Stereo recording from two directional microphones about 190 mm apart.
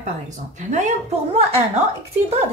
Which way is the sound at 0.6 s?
40° right (ahead or behind).